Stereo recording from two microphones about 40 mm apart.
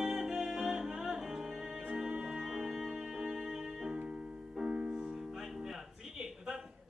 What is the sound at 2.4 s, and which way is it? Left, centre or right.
Music, centre.